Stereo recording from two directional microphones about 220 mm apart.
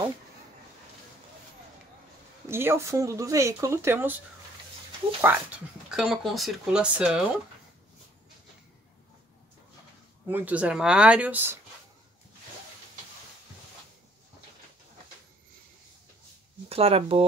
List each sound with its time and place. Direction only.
2.4 s speech: 10° right (ahead or behind)
5.2 s speech: 10° right (ahead or behind)
10.2 s speech: 10° right (ahead or behind)
16.6 s speech: 25° right (ahead or behind)